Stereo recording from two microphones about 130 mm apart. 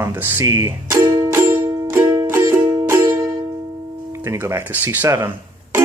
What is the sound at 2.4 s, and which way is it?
Music, 20° right (ahead or behind).